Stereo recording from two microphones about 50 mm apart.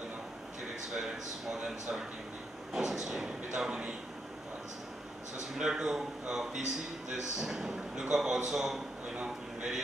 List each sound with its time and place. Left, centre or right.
0.9 s speech: centre
5.6 s speech: centre
9.1 s a sound: right